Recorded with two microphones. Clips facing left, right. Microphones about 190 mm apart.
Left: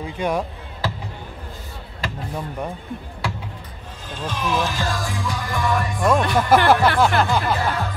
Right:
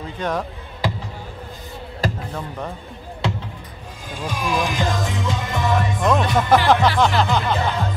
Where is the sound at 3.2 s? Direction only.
20° right (ahead or behind).